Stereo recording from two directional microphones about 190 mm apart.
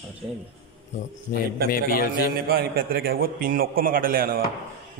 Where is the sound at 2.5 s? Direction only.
55° right (ahead or behind).